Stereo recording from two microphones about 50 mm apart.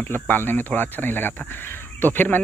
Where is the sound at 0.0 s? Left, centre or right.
Left.